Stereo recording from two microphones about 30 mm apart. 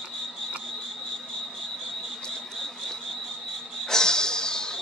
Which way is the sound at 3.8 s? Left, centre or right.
Left.